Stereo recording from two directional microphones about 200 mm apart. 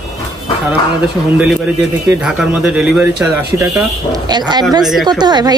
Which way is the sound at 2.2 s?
5° right (ahead or behind).